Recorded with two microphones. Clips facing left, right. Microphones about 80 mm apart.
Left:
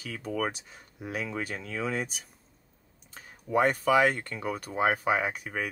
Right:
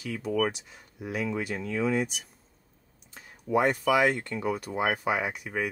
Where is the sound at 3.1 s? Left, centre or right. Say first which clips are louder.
Even; left.